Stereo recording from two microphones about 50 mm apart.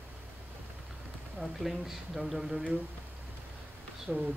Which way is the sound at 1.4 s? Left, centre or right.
Centre.